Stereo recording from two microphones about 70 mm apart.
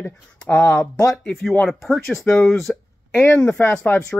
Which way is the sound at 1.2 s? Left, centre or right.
Centre.